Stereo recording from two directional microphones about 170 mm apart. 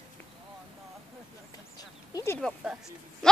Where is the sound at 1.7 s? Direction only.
20° left (ahead or behind).